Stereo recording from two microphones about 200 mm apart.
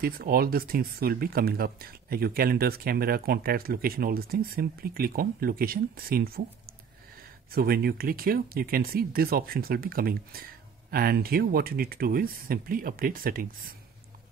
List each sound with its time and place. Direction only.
0.0 s speech: 50° right (ahead or behind)
7.5 s speech: 50° right (ahead or behind)